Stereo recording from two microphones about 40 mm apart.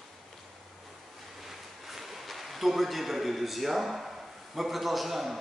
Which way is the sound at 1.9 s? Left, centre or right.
Centre.